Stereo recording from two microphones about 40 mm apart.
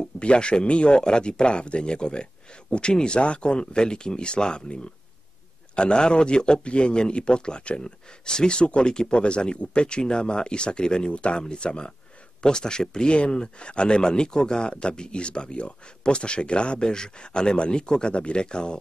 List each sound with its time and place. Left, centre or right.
0.2 s speech: left